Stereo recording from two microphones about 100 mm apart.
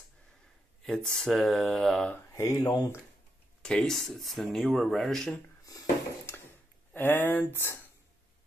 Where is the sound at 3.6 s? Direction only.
10° left (ahead or behind).